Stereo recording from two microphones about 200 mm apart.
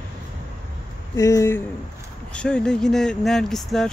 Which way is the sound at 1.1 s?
15° left (ahead or behind).